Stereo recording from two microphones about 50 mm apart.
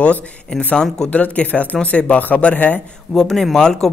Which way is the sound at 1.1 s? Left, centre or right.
Left.